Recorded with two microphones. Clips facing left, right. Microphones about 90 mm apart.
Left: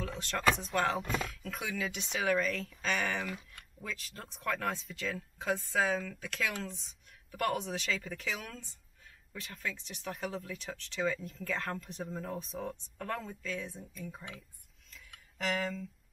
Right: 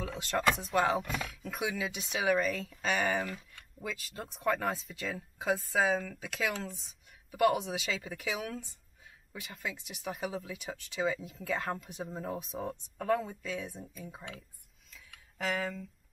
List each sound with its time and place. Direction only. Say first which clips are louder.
0.0 s speech: right 1 dB; 5° right (ahead or behind)
14.0 s speech: left 2 dB; 20° right (ahead or behind)
14.9 s a sound: even; 5° right (ahead or behind)